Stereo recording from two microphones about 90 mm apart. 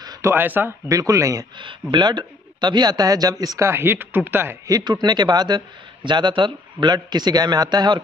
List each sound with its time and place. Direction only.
0.2 s speech: 25° right (ahead or behind)
0.8 s speech: 40° right (ahead or behind)
1.6 s a man's voice: 65° right (ahead or behind); by 4.6 s 25° right (ahead or behind)
4.6 s a man's voice: 45° right (ahead or behind)